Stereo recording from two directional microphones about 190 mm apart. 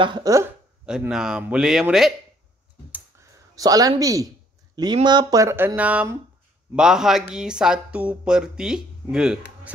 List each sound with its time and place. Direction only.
0.0 s speech: 20° right (ahead or behind)
0.8 s speech: 5° right (ahead or behind)
2.9 s clicking: 15° right (ahead or behind)
4.7 s speech: 20° right (ahead or behind); by 9.4 s 5° right (ahead or behind)